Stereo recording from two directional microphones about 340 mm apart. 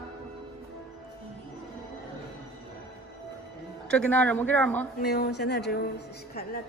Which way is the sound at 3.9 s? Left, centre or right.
Centre.